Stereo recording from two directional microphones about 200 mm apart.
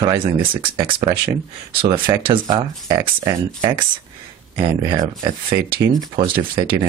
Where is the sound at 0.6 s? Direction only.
25° right (ahead or behind).